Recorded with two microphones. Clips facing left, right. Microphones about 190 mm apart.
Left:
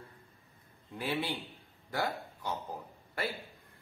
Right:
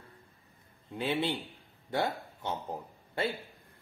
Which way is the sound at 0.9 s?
25° right (ahead or behind).